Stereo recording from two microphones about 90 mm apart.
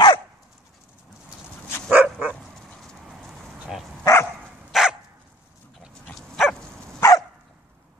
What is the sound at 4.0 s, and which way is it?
Dog, 30° left (ahead or behind).